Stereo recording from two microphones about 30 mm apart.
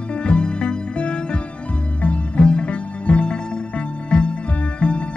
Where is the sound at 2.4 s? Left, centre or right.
Left.